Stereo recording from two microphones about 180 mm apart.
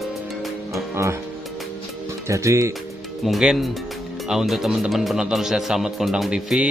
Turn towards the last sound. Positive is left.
turn(degrees=-5)  # may be behind; listen again after turning